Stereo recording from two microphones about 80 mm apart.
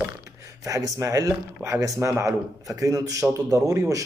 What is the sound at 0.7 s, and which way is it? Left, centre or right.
Speech, right.